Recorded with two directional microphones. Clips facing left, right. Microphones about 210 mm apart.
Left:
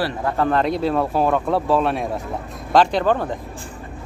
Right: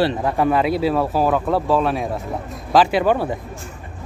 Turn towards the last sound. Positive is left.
turn(degrees=-10)  # may be behind; listen again after turning